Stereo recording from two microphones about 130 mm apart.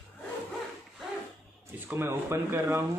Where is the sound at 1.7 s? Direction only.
15° right (ahead or behind).